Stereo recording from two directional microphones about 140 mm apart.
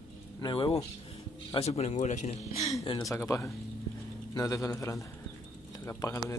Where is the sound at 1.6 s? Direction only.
55° left (ahead or behind).